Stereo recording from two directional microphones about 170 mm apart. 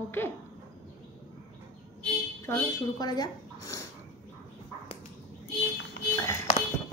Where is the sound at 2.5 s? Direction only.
25° left (ahead or behind).